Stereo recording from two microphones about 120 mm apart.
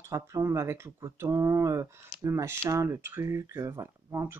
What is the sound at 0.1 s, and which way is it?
Speech, 25° right (ahead or behind).